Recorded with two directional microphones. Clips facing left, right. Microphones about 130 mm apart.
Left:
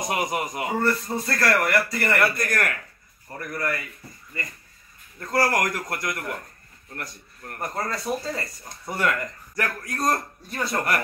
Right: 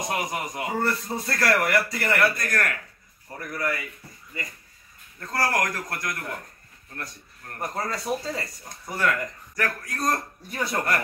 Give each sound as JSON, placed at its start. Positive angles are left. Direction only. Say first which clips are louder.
{"t": 0.0, "sound": "speech", "louder": "left 3 dB", "side_deg": 10}
{"t": 0.8, "sound": "a man's voice", "louder": "left 3 dB", "side_deg": -5}
{"t": 2.1, "sound": "speech", "louder": "even", "side_deg": 10}
{"t": 3.3, "sound": "a man's voice", "louder": "left 1 dB", "side_deg": -5}
{"t": 5.2, "sound": "speech", "louder": "left 3 dB", "side_deg": 10}
{"t": 7.6, "sound": "speech", "louder": "left 1 dB", "side_deg": -5}
{"t": 8.8, "sound": "speech", "louder": "left 1 dB", "side_deg": 15}
{"t": 10.5, "sound": "speech", "louder": "left 1 dB", "side_deg": -10}